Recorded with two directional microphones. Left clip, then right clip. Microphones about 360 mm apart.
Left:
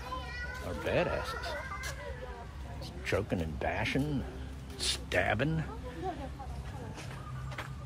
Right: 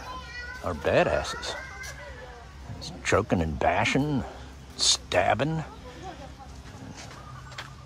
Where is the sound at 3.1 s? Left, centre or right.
Centre.